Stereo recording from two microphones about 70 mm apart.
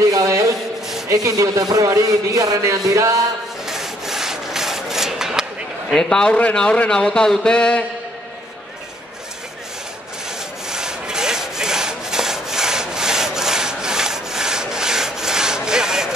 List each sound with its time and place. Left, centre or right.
0.1 s a sound: right
1.0 s speech: right
1.9 s a sound: right
3.6 s rub: centre
5.9 s a man's voice: centre
10.7 s sawing: centre